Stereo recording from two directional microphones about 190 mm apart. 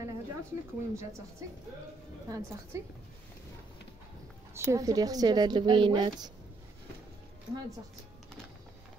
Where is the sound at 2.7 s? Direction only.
15° right (ahead or behind).